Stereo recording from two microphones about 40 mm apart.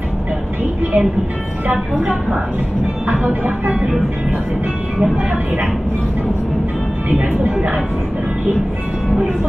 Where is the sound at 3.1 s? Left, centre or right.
Right.